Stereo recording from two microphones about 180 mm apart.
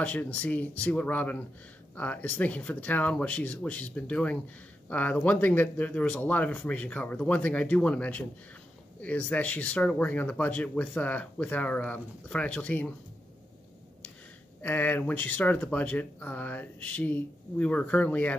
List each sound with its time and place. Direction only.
0.0 s speech: 10° left (ahead or behind)
14.6 s speech: 10° left (ahead or behind)